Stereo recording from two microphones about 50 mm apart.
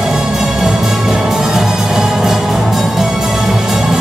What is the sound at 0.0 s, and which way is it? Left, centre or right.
Music, centre.